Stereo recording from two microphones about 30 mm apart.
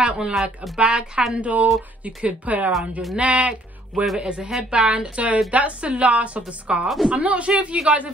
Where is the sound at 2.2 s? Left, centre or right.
Right.